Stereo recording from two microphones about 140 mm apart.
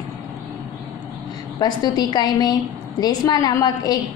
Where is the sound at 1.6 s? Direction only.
30° left (ahead or behind).